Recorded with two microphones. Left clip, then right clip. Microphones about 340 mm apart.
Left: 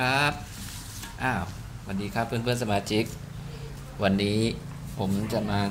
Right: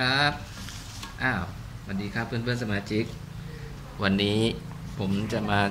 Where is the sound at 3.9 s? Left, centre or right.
Centre.